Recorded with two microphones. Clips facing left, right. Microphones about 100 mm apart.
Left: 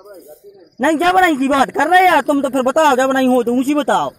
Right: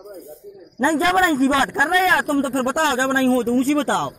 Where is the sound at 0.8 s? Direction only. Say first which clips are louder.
Left 5 dB; 65° left (ahead or behind).